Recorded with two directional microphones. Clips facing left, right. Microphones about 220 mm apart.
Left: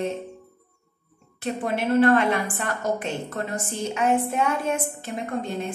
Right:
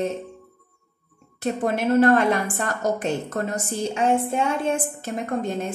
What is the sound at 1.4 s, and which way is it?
A woman's voice, 40° right (ahead or behind).